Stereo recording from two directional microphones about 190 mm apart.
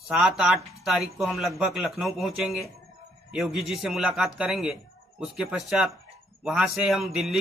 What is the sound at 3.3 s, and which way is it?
A man's voice, centre (ahead or behind).